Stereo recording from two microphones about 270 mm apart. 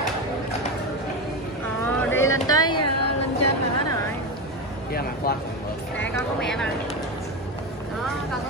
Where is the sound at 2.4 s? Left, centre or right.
Centre.